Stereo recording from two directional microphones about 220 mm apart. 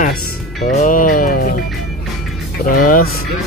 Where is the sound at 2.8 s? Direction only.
40° left (ahead or behind).